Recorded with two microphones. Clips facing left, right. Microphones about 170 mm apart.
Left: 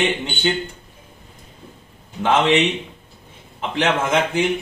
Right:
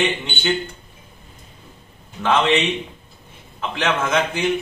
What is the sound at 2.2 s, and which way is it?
Speech, 20° left (ahead or behind).